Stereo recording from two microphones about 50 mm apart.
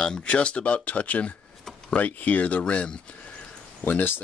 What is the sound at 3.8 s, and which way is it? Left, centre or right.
Speech, left.